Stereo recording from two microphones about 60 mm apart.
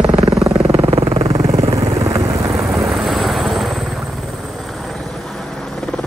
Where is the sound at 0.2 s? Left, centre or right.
Right.